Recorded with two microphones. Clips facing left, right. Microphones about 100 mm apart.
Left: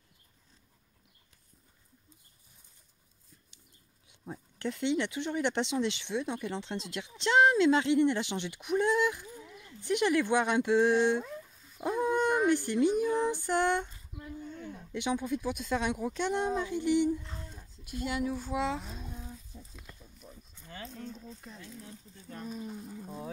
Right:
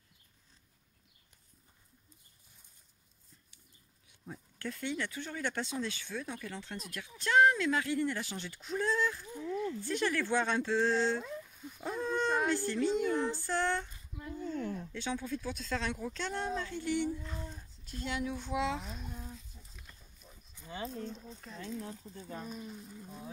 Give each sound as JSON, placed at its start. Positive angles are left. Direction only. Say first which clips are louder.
{"t": 4.1, "sound": "speech", "louder": "left 4 dB", "side_deg": 20}
{"t": 11.8, "sound": "dog", "louder": "left 5 dB", "side_deg": 15}
{"t": 13.0, "sound": "female singing", "louder": "left 3 dB", "side_deg": 5}
{"t": 13.3, "sound": "female singing", "louder": "left 4 dB", "side_deg": 20}
{"t": 14.4, "sound": "a sound", "louder": "right 9 dB", "side_deg": -90}
{"t": 14.9, "sound": "speech", "louder": "left 5 dB", "side_deg": 15}
{"t": 17.8, "sound": "speech", "louder": "left 4 dB", "side_deg": 5}
{"t": 20.5, "sound": "dog", "louder": "right 5 dB", "side_deg": -15}
{"t": 20.8, "sound": "a sound", "louder": "right 3 dB", "side_deg": -30}
{"t": 21.5, "sound": "speech", "louder": "right 7 dB", "side_deg": -65}
{"t": 21.8, "sound": "speech", "louder": "right 5 dB", "side_deg": -40}
{"t": 22.6, "sound": "speech", "louder": "left 5 dB", "side_deg": 30}